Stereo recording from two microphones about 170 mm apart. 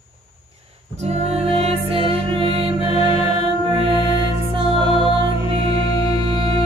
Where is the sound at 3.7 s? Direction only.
35° right (ahead or behind).